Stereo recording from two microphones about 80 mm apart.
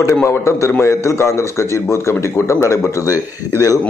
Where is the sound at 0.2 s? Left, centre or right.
Left.